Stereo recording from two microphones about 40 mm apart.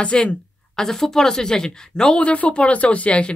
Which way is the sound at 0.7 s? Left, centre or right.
Centre.